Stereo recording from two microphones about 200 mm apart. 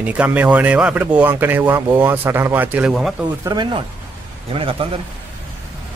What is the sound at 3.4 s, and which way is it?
A man's voice, 20° right (ahead or behind).